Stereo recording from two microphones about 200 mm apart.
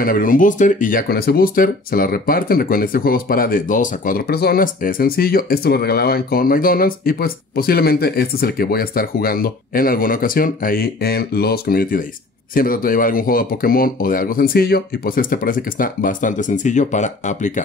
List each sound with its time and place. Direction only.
0.0 s speech: 45° left (ahead or behind)